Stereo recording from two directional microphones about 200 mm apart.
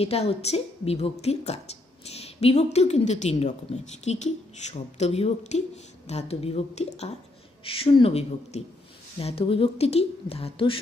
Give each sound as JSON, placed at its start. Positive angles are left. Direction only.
{"t": 0.0, "sound": "a woman's voice", "side_deg": 30}